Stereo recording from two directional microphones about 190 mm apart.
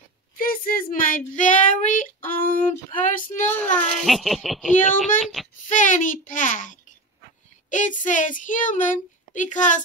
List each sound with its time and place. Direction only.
0.4 s speech: 50° left (ahead or behind)
3.4 s a child's voice: 5° left (ahead or behind)
5.7 s a child's voice: 45° left (ahead or behind)